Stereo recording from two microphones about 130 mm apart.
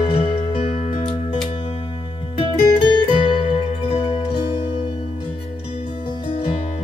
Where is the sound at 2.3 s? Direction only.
40° left (ahead or behind).